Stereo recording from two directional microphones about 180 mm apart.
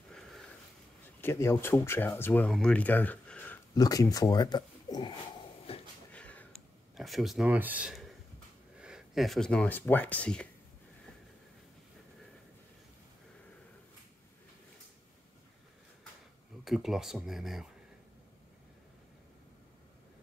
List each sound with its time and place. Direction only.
0.1 s sniff: centre (ahead or behind)
1.2 s speech: 15° left (ahead or behind)
3.7 s speech: 20° left (ahead or behind)
5.7 s a sound: 30° left (ahead or behind)
6.1 s a sound: 5° left (ahead or behind)
7.0 s speech: centre (ahead or behind)
16.6 s speech: centre (ahead or behind)